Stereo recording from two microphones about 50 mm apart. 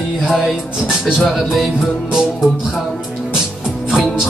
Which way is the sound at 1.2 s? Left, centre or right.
Centre.